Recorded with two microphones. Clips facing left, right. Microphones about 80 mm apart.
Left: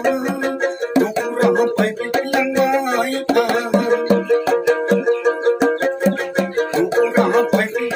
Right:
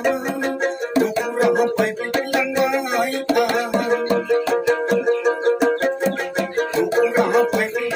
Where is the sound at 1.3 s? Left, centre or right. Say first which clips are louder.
Left 2 dB; centre.